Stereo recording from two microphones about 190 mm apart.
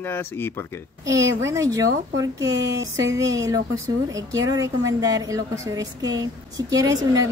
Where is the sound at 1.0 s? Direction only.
15° right (ahead or behind).